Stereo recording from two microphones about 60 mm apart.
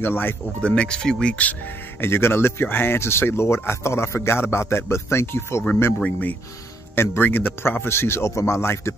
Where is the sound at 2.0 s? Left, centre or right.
Left.